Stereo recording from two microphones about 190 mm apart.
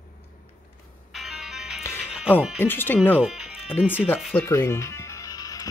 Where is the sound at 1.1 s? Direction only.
Centre (ahead or behind).